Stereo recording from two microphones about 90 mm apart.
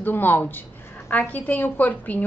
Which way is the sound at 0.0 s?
20° left (ahead or behind).